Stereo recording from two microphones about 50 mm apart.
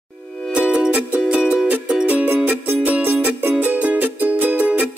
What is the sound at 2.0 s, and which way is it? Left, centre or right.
Music, right.